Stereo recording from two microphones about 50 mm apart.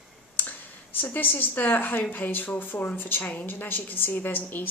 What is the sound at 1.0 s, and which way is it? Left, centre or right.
A woman's voice, left.